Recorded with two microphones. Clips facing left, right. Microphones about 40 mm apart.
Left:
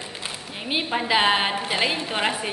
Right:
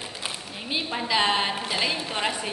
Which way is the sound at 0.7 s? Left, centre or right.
Left.